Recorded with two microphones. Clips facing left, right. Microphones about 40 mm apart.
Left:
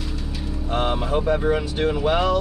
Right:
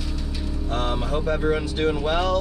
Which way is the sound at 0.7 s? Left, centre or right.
Left.